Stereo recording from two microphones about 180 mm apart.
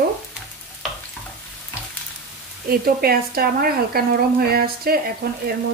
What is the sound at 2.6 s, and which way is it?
Speech, 55° right (ahead or behind).